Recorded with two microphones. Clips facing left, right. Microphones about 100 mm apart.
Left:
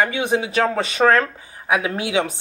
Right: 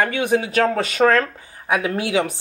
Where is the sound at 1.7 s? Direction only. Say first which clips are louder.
Even; 20° left (ahead or behind).